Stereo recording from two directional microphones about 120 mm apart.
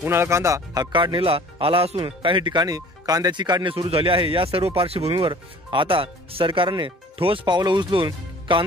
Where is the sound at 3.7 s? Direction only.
50° right (ahead or behind).